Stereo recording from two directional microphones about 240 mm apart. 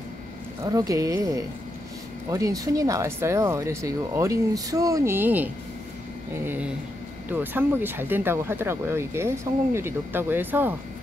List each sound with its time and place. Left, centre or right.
0.7 s speech: centre